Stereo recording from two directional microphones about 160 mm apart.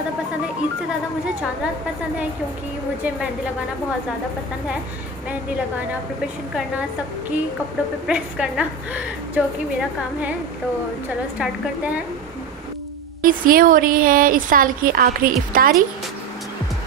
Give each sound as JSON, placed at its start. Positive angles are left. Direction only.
{"t": 8.1, "sound": "a woman's voice", "side_deg": -5}
{"t": 11.3, "sound": "a woman's voice", "side_deg": -10}
{"t": 13.2, "sound": "speech", "side_deg": -60}